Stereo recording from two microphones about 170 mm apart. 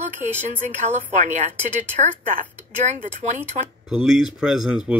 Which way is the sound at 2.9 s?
40° right (ahead or behind).